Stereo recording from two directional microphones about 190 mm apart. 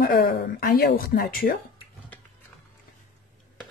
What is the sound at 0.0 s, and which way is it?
A woman's voice, 50° left (ahead or behind).